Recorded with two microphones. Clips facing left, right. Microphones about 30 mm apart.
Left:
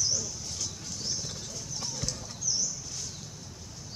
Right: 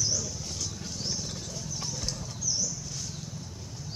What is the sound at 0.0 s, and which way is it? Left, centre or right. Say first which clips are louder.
Mouse: even; centre.